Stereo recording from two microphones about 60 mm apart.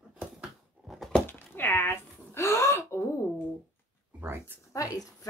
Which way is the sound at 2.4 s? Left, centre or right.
Left.